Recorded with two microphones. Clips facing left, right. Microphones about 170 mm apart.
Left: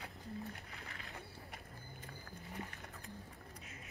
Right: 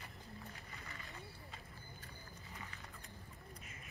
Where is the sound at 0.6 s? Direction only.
85° left.